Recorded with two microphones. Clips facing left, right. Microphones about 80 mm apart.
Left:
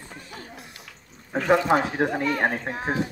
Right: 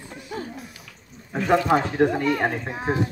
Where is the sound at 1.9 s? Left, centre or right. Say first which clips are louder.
Right 4 dB; centre.